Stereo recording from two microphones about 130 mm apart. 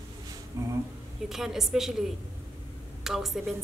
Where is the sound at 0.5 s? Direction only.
25° right (ahead or behind).